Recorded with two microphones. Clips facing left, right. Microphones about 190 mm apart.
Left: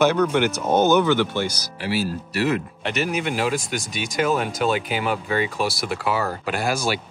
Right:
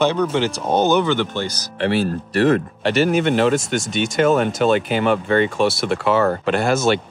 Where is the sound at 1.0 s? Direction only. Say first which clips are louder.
Even; 10° left (ahead or behind).